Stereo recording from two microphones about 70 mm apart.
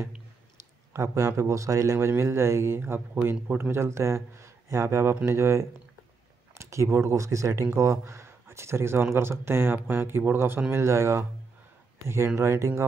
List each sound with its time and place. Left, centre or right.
0.9 s a man's voice: right
10.7 s a man's voice: right
12.4 s a man's voice: right